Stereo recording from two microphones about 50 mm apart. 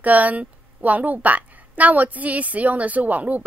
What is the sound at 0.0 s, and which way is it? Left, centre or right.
A woman's voice, right.